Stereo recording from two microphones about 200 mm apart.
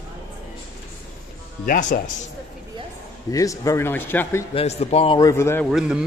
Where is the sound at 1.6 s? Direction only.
40° left (ahead or behind).